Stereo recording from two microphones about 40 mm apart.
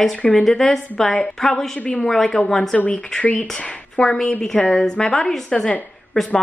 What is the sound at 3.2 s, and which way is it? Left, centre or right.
Speech, left.